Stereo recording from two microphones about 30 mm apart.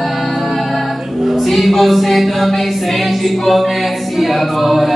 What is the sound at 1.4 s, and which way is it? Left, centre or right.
A capella, centre.